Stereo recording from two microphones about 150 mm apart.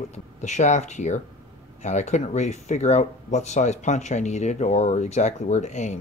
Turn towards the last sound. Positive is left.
turn(degrees=50)  # may be behind; listen again after turning